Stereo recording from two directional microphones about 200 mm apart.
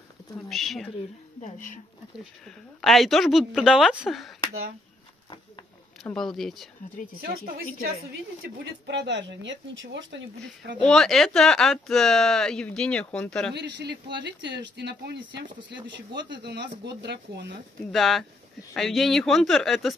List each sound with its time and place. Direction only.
0.5 s speech: centre (ahead or behind)
1.4 s speech: 40° left (ahead or behind)
2.4 s speech: centre (ahead or behind)
6.0 s speech: centre (ahead or behind)
8.8 s speech: 60° right (ahead or behind)
10.8 s speech: 5° left (ahead or behind)
13.6 s speech: 60° right (ahead or behind)
17.9 s speech: centre (ahead or behind)